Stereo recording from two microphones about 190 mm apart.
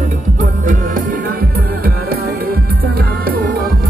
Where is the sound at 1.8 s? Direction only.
50° right (ahead or behind).